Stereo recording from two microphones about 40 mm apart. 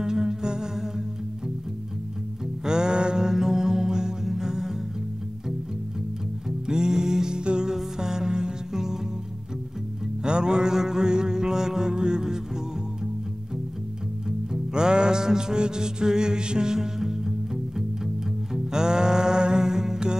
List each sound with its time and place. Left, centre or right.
0.0 s music: centre
2.6 s music: centre
6.7 s music: centre
10.2 s mantra: right
14.5 s music: centre